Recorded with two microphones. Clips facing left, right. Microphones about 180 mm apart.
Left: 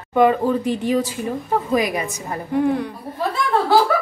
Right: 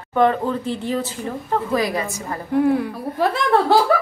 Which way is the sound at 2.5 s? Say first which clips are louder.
Right 2 dB; 5° right (ahead or behind).